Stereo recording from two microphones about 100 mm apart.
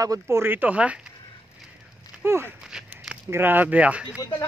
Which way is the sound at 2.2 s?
25° right (ahead or behind).